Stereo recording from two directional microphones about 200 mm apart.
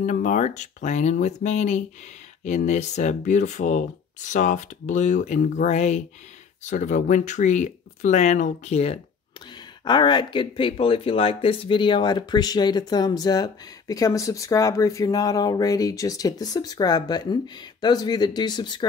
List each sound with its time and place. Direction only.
0.0 s speech: 40° left (ahead or behind); by 18.9 s 20° left (ahead or behind)